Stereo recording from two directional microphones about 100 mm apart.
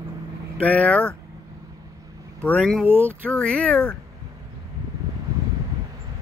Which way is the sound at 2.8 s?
20° right (ahead or behind).